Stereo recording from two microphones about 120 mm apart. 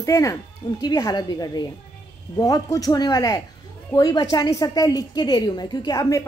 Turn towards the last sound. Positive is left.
turn(degrees=35)  # may be behind; listen again after turning